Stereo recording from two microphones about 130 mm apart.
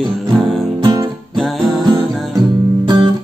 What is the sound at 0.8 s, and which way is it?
Guitar, 35° right (ahead or behind).